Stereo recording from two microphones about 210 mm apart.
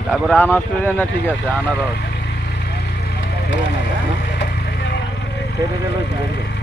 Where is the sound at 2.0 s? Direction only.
55° left (ahead or behind).